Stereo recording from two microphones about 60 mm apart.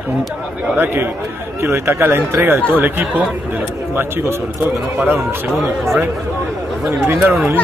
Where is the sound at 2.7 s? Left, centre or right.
Right.